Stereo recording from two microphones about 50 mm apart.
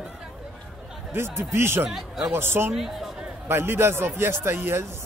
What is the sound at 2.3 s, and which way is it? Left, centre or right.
Speech, right.